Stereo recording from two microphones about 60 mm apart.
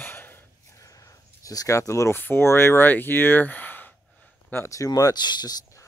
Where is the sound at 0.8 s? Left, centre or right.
Left.